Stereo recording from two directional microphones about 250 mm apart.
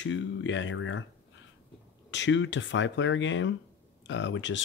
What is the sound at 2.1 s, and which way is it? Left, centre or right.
Speech, left.